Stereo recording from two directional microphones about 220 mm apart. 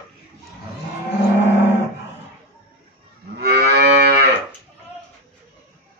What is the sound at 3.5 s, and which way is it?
Livestock, 45° right (ahead or behind).